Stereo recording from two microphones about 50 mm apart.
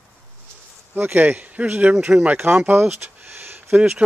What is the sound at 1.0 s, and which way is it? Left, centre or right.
Speech, right.